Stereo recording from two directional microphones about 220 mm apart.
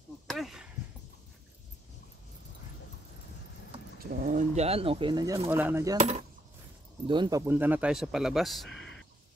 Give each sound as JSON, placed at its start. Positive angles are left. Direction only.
{"t": 0.3, "sound": "a sound", "side_deg": 0}
{"t": 4.0, "sound": "speech", "side_deg": -40}
{"t": 5.9, "sound": "speech", "side_deg": -30}
{"t": 7.1, "sound": "speech", "side_deg": -20}